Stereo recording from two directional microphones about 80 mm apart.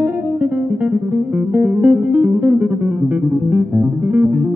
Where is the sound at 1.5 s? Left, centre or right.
Right.